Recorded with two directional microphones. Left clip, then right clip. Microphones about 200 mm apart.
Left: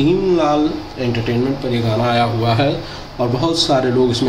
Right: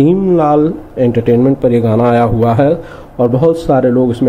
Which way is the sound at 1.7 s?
45° right (ahead or behind).